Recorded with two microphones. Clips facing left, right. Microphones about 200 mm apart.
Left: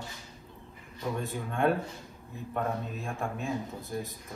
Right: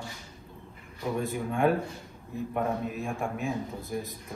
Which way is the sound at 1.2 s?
15° right (ahead or behind).